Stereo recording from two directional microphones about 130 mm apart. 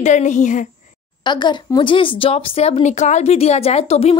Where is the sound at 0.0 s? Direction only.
65° left (ahead or behind).